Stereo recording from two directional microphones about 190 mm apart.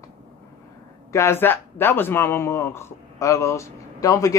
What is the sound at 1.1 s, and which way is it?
Speech, 15° left (ahead or behind).